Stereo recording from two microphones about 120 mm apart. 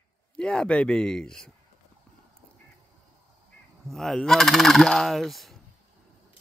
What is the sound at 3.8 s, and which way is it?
Fowl, centre (ahead or behind).